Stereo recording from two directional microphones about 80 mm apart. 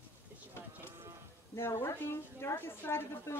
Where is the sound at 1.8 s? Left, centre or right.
Left.